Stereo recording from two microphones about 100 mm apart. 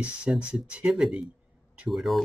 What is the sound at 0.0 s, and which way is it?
Speech, 10° right (ahead or behind).